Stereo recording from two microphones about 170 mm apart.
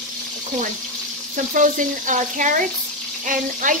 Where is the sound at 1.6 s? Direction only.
50° right (ahead or behind).